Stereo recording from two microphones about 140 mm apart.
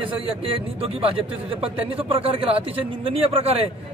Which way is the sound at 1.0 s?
40° right (ahead or behind).